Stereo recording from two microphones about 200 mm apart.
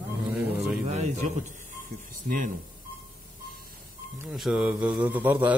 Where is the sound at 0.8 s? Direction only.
35° right (ahead or behind).